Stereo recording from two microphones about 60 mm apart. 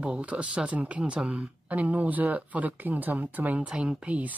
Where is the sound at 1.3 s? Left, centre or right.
Right.